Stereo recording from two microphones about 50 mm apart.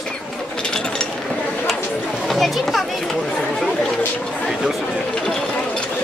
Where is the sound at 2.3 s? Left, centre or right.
Centre.